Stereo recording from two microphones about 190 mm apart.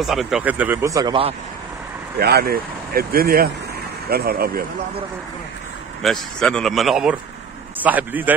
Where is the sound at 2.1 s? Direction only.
55° right (ahead or behind).